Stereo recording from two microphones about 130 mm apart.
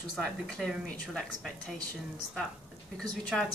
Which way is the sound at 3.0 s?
5° left (ahead or behind).